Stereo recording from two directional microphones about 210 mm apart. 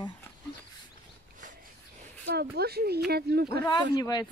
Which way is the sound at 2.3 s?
50° right (ahead or behind).